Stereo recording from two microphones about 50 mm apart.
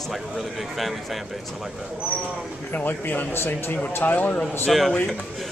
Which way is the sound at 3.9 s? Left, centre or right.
Left.